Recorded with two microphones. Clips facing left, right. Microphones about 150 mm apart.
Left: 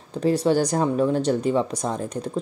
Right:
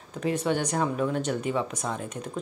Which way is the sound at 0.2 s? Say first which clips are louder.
Left 7 dB; 35° left (ahead or behind).